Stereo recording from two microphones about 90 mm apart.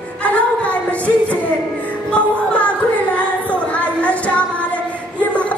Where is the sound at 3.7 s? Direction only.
15° left (ahead or behind).